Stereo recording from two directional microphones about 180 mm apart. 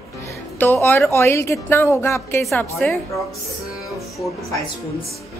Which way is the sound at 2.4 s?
Centre (ahead or behind).